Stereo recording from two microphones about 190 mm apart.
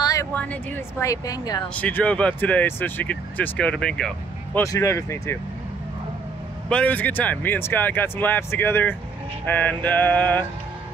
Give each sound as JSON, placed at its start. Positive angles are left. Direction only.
{"t": 0.0, "sound": "speech", "side_deg": 15}
{"t": 1.8, "sound": "speech", "side_deg": 10}
{"t": 4.6, "sound": "speech", "side_deg": 15}
{"t": 6.7, "sound": "speech", "side_deg": 10}